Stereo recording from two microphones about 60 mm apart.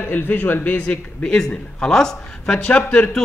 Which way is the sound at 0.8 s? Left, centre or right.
Centre.